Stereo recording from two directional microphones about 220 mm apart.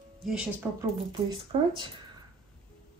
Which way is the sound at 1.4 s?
25° right (ahead or behind).